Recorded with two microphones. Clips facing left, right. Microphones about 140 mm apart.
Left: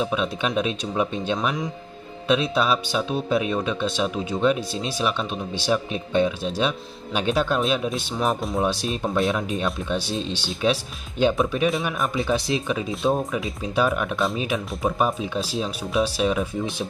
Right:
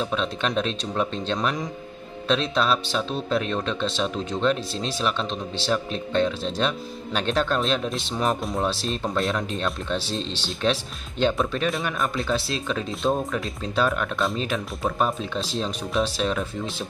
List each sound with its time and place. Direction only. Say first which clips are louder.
0.0 s speech: left 2 dB; 10° left (ahead or behind)
11.7 s speech: left 2 dB; centre (ahead or behind)
12.3 s speech: left 3 dB; 15° left (ahead or behind)
14.5 s speech: left 2 dB; 15° left (ahead or behind)
15.0 s speech: left 2 dB; 5° left (ahead or behind)